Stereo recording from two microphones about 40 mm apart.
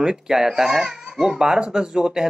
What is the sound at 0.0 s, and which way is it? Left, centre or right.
Speech, centre.